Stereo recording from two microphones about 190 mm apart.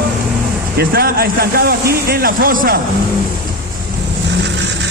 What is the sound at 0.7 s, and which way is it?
Speech, 55° right (ahead or behind).